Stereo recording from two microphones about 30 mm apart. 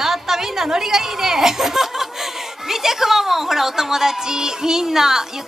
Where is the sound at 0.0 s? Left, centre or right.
Centre.